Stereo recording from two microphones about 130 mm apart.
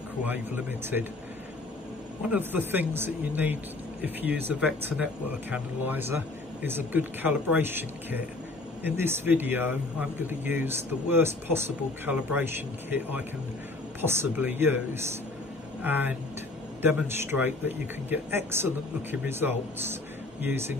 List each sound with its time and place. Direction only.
0.3 s a man's voice: 15° right (ahead or behind)
2.2 s a man's voice: 15° right (ahead or behind)
15.8 s a man's voice: 15° right (ahead or behind)